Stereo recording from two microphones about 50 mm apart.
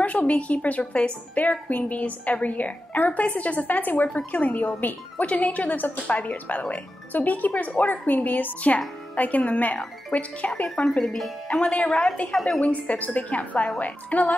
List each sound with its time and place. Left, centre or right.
0.0 s a woman's voice: left
10.1 s a woman's voice: centre
11.8 s a woman's voice: centre
12.8 s a woman's voice: left